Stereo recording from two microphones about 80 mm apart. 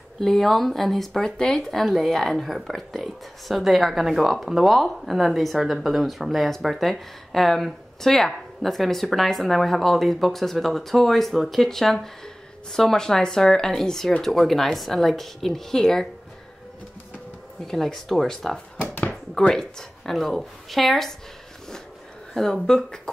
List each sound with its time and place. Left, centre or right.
0.2 s speech: centre
17.6 s speech: centre
18.8 s a sound: left
19.3 s speech: centre
22.3 s speech: centre